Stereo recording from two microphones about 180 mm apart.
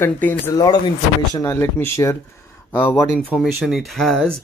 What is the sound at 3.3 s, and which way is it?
Speech, centre (ahead or behind).